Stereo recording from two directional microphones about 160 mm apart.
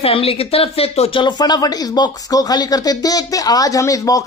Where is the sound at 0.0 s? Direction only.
35° left (ahead or behind).